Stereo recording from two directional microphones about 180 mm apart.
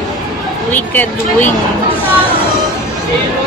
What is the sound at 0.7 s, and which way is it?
Speech, 10° left (ahead or behind).